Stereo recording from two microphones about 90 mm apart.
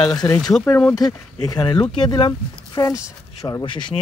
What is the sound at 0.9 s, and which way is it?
Speech, 45° left (ahead or behind).